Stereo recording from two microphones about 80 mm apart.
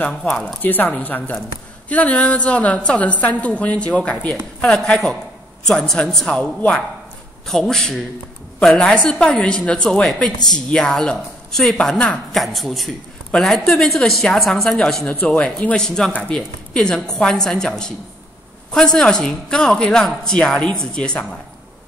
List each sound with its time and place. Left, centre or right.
0.6 s speech: left; by 15.0 s centre
15.0 s speech: centre